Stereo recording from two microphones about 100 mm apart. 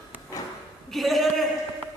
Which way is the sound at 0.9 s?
Centre (ahead or behind).